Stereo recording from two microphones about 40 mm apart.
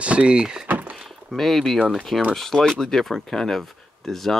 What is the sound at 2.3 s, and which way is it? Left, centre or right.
Speech, centre.